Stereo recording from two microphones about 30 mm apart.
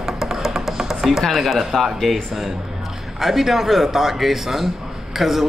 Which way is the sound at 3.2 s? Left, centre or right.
Centre.